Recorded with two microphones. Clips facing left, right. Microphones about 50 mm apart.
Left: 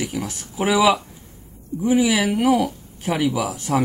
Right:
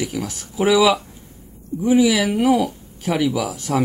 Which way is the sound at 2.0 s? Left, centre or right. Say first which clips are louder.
Right 3 dB; left.